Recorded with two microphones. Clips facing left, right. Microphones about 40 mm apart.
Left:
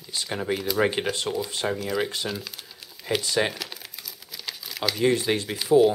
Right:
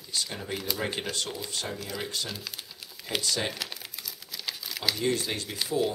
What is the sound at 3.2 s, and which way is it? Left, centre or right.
Speech, centre.